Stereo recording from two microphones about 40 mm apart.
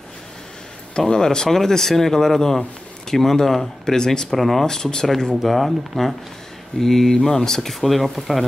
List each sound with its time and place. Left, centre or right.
0.9 s speech: centre
4.4 s speech: centre
4.6 s speech: centre
5.3 s speech: centre
7.8 s speech: centre